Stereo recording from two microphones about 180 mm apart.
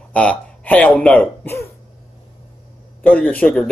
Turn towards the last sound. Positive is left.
turn(degrees=5)  # may be behind; listen again after turning